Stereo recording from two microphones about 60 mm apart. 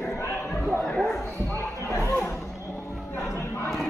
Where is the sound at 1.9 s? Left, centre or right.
Left.